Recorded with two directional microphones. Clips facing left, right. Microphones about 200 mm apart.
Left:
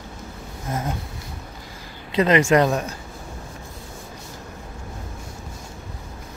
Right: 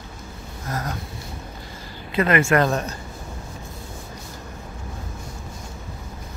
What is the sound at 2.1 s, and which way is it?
Speech, 20° left (ahead or behind).